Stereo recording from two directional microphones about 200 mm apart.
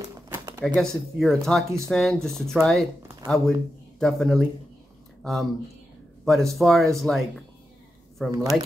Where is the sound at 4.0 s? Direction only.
Centre (ahead or behind).